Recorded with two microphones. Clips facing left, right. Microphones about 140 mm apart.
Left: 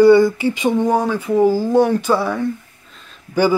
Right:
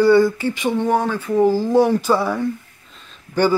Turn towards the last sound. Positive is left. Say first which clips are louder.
# left 1 dB
turn(degrees=5)  # may be behind; listen again after turning